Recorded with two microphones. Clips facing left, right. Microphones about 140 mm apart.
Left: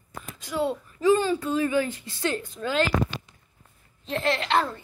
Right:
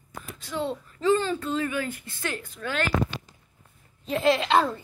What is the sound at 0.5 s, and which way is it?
A woman's voice, 10° left (ahead or behind).